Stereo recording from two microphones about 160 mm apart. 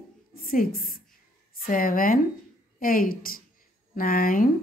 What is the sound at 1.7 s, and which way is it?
A woman's voice, 60° left (ahead or behind).